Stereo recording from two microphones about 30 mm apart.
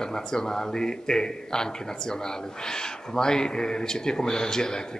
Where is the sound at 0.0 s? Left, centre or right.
Left.